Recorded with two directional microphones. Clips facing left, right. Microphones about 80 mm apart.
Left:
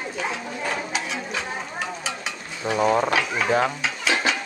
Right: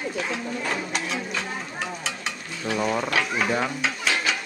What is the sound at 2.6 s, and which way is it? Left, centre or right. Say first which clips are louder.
Speech: left 5 dB; centre.